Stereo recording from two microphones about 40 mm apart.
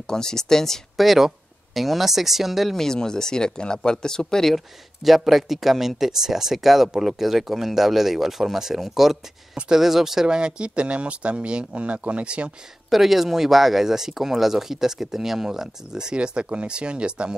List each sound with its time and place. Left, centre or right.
0.0 s speech: centre
0.9 s speech: centre
2.8 s speech: centre
5.0 s speech: centre
10.2 s speech: right
12.9 s speech: centre; by 17.4 s right